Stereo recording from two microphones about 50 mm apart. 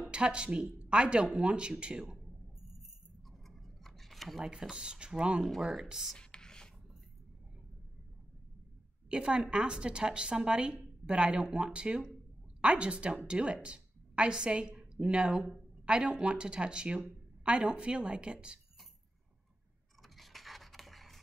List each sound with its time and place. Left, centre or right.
0.0 s a woman's voice: right
3.3 s scissors: centre
4.5 s speech: centre
5.4 s speech: centre
6.1 s writing: centre
9.1 s a woman's voice: centre
20.0 s a sound: centre